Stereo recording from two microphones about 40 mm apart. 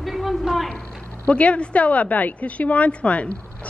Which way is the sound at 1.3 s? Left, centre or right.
Left.